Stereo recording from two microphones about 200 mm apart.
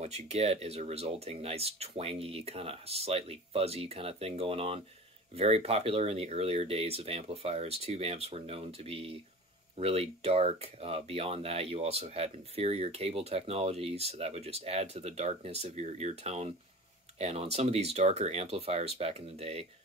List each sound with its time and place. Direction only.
0.0 s speech: 35° right (ahead or behind)